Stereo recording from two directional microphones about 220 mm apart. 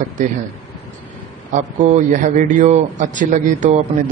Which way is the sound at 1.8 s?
35° right (ahead or behind).